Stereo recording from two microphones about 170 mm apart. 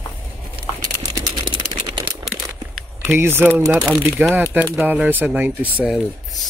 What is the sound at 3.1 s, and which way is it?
Speech, 15° right (ahead or behind).